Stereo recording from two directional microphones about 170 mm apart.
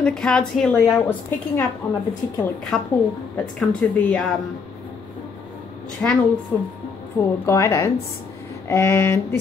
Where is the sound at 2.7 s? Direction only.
Centre (ahead or behind).